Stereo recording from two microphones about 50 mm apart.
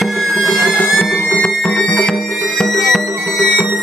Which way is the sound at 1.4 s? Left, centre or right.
Centre.